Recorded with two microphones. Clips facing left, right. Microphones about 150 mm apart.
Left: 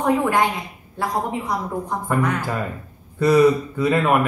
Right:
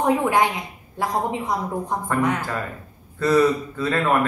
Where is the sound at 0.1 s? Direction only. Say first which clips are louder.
Left 3 dB; 15° right (ahead or behind).